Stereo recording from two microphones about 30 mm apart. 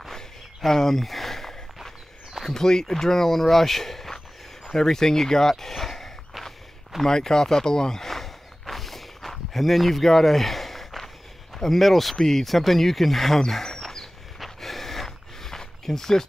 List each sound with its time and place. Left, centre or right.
0.7 s speech: centre
7.1 s speech: left
8.0 s walk: centre
11.5 s speech: centre
13.5 s speech: centre
13.7 s a sound: centre